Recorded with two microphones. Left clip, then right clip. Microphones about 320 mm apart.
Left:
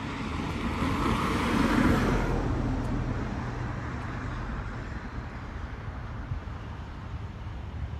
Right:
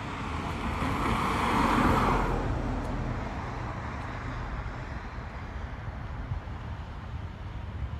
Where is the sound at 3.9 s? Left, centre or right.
Right.